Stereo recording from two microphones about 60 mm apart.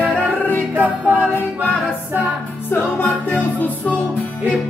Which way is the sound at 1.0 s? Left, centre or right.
Right.